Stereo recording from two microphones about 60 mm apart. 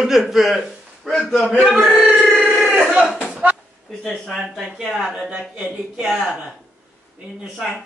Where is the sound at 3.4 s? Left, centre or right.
Right.